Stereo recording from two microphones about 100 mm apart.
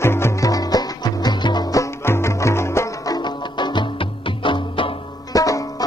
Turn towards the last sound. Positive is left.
turn(degrees=35)  # may be behind; listen again after turning